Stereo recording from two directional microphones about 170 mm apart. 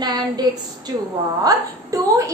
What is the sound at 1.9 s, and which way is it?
Speech, 20° right (ahead or behind).